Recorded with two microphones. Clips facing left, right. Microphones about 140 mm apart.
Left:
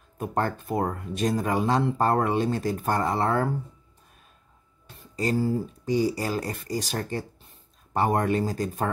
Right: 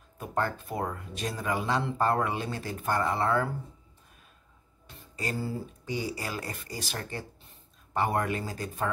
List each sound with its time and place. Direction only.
0.2 s speech: 45° left (ahead or behind)
5.1 s speech: 40° left (ahead or behind)